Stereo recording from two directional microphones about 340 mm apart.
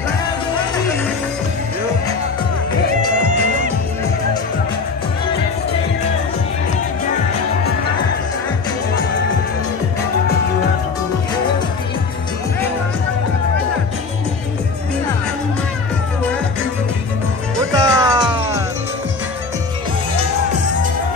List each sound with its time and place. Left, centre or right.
17.7 s music: centre